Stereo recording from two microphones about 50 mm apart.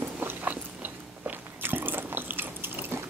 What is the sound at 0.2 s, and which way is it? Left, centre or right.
Biting, right.